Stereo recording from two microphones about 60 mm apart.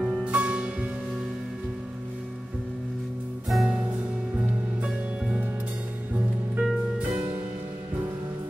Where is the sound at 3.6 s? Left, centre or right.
Centre.